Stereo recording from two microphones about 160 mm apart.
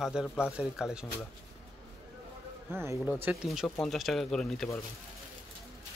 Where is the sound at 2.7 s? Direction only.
15° right (ahead or behind).